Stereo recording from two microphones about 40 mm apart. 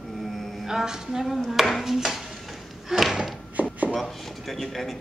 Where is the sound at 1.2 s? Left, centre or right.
Centre.